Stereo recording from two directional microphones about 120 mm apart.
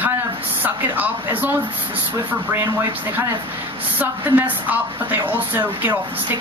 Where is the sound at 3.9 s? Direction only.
15° right (ahead or behind).